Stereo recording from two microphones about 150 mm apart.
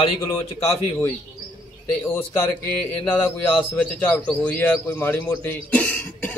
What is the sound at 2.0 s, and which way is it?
A man's voice, 15° left (ahead or behind).